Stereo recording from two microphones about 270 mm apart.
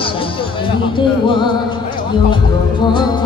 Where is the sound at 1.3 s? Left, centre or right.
Centre.